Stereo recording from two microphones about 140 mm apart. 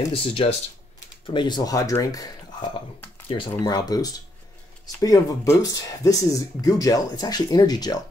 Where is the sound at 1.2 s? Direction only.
35° left (ahead or behind).